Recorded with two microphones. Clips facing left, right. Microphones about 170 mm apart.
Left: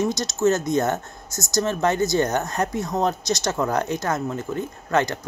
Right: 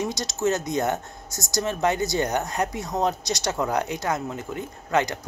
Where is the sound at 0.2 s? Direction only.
15° right (ahead or behind).